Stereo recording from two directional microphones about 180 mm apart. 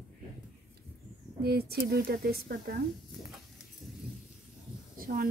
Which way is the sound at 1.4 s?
60° right (ahead or behind).